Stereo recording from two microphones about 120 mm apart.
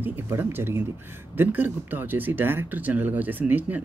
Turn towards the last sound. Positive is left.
turn(degrees=-15)  # may be behind; listen again after turning